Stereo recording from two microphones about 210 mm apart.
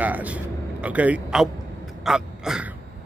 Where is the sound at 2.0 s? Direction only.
Centre (ahead or behind).